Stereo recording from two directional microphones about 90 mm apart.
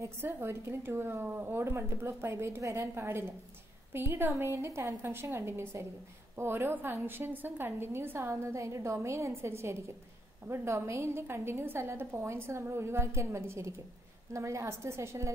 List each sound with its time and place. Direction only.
0.0 s a woman's voice: 25° right (ahead or behind)